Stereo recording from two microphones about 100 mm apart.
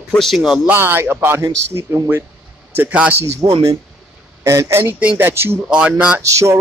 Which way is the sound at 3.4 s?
40° right (ahead or behind).